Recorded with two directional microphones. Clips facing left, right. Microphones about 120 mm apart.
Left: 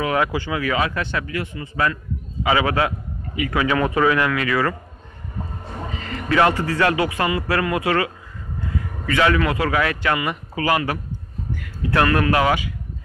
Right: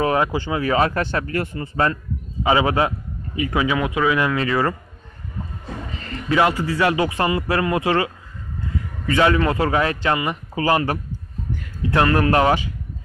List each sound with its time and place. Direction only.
0.0 s speech: 30° right (ahead or behind); by 1.7 s 45° right (ahead or behind)
2.4 s a man's voice: 25° right (ahead or behind)
3.6 s speech: 10° right (ahead or behind)
4.2 s a man's voice: 25° right (ahead or behind)
6.2 s a man's voice: 20° right (ahead or behind)